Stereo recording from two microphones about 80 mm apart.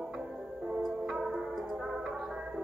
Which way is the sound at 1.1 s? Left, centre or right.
Centre.